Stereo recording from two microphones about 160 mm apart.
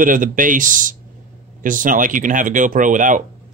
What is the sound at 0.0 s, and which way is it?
Speech, 55° right (ahead or behind).